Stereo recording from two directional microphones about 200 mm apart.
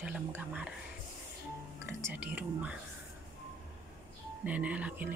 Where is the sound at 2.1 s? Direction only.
10° right (ahead or behind).